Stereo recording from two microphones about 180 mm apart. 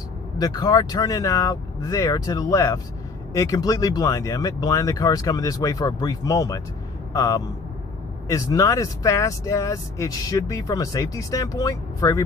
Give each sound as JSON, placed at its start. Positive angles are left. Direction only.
{"t": 0.4, "sound": "speech", "side_deg": 20}